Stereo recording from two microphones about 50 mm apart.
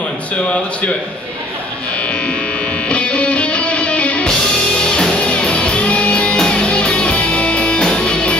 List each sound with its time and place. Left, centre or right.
2.0 s electric shaver: left
2.9 s music: left